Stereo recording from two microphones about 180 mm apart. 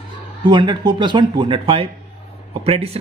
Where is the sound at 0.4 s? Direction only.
25° right (ahead or behind).